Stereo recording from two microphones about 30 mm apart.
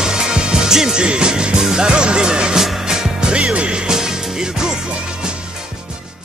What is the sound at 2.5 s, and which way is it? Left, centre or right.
Music, centre.